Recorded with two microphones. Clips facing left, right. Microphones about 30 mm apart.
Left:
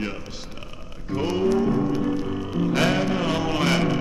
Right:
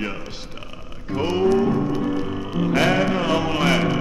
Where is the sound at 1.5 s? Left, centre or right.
Centre.